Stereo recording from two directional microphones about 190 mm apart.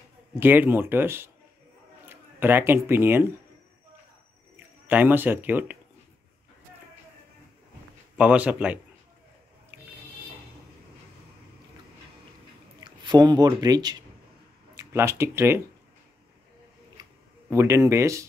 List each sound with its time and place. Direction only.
0.4 s speech: 10° right (ahead or behind)
4.8 s speech: 10° right (ahead or behind)
8.2 s speech: 5° right (ahead or behind)
12.8 s speech: 20° right (ahead or behind)
17.0 s a sound: 20° right (ahead or behind)
17.5 s speech: 15° right (ahead or behind)